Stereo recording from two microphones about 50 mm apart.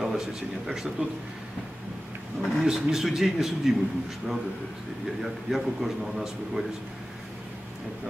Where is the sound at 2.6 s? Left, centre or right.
Centre.